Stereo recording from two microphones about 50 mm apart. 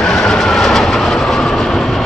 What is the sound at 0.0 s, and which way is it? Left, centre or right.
Train, centre.